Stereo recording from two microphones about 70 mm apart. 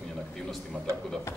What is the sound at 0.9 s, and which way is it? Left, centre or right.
Speech, right.